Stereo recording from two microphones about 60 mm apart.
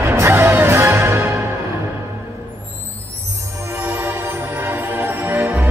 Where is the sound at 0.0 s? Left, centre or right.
Right.